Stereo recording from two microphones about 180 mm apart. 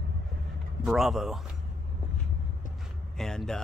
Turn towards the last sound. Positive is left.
turn(degrees=5)  # may be behind; listen again after turning